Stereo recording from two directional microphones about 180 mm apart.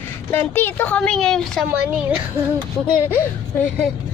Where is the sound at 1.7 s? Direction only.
10° right (ahead or behind).